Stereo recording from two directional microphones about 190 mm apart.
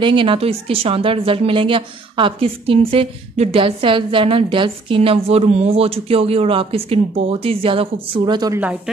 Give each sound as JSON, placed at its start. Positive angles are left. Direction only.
{"t": 0.0, "sound": "a woman's voice", "side_deg": -25}
{"t": 8.5, "sound": "speech", "side_deg": -5}